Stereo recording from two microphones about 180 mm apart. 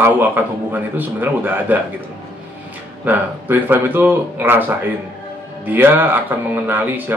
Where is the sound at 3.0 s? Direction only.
10° right (ahead or behind).